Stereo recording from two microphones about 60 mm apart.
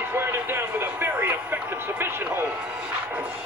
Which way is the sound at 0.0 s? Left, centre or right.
Right.